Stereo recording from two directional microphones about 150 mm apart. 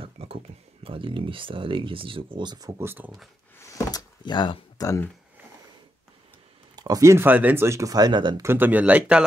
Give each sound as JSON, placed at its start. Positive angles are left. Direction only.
{"t": 0.0, "sound": "a sound", "side_deg": -40}
{"t": 0.8, "sound": "speech", "side_deg": -35}
{"t": 2.8, "sound": "speech", "side_deg": -15}
{"t": 3.5, "sound": "speech", "side_deg": 20}
{"t": 6.7, "sound": "speech", "side_deg": -25}
{"t": 8.4, "sound": "speech", "side_deg": -15}